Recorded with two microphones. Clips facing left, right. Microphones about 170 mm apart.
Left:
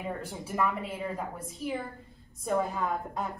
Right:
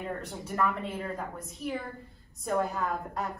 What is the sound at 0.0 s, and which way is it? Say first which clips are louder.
A woman's voice: even; 5° left (ahead or behind).